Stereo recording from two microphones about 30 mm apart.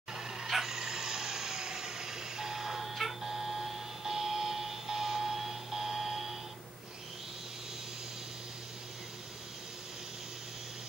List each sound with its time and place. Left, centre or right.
0.1 s vehicle: centre
0.5 s a sound: centre
0.7 s vehicle: centre